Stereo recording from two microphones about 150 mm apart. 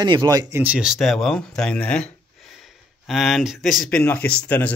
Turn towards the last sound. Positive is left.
turn(degrees=15)  # may be behind; listen again after turning